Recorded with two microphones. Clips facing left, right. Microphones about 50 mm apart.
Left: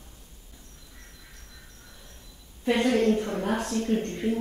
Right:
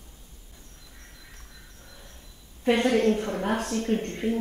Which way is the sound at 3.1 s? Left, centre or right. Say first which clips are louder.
Even; right.